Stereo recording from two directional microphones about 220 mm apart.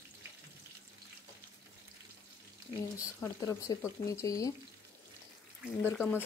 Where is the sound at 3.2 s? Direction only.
15° left (ahead or behind).